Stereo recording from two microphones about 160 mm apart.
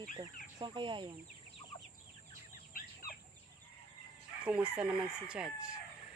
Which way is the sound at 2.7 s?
60° left (ahead or behind).